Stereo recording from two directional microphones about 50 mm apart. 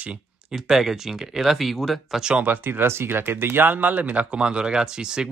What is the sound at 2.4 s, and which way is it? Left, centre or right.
Speech, right.